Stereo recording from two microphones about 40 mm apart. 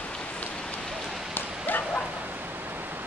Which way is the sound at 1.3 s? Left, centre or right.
Left.